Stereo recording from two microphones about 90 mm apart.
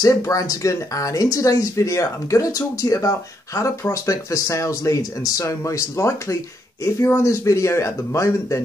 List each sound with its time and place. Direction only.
0.0 s speech: 40° left (ahead or behind)